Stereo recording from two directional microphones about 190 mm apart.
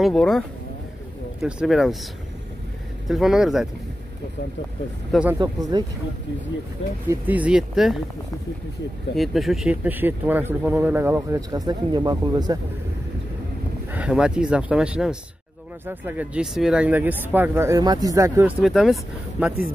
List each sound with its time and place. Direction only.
0.0 s speech: centre (ahead or behind)
3.1 s speech: centre (ahead or behind)
5.3 s speech: 20° right (ahead or behind)
7.1 s speech: 10° right (ahead or behind)
9.1 s speech: centre (ahead or behind); by 12.5 s 20° right (ahead or behind)
13.8 s speech: 5° right (ahead or behind)
18.6 s speech: centre (ahead or behind)